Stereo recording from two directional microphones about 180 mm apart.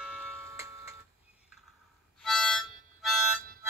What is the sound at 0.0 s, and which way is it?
Tick-tock, 5° right (ahead or behind).